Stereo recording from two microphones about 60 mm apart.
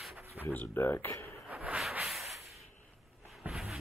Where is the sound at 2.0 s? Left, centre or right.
Centre.